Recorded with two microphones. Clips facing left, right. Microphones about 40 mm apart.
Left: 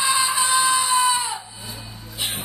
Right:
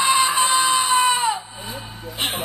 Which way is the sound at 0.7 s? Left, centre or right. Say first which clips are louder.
Right 2 dB; right.